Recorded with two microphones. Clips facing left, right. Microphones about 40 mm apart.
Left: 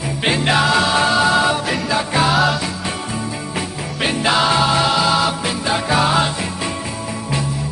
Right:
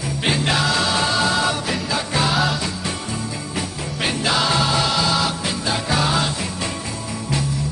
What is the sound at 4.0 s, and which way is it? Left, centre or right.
Music, centre.